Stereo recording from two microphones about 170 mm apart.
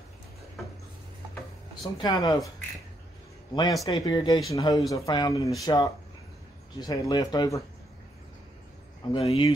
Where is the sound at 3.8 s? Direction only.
20° left (ahead or behind).